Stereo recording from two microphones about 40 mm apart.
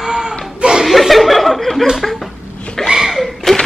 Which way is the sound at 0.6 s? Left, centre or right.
Centre.